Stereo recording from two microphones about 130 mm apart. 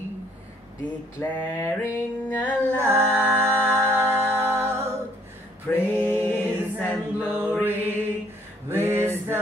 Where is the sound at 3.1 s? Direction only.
15° right (ahead or behind).